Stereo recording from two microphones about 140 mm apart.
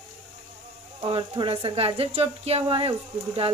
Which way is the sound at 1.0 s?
35° right (ahead or behind).